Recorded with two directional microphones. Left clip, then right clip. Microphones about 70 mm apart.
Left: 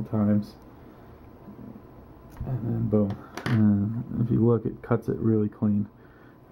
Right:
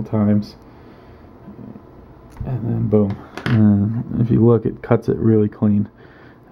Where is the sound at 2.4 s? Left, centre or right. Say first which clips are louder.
Right 7 dB; right.